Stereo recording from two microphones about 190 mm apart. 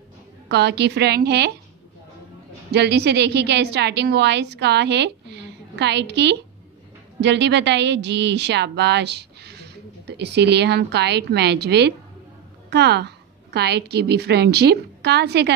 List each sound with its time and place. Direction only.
0.5 s a woman's voice: 65° right (ahead or behind)
2.7 s a woman's voice: 60° right (ahead or behind)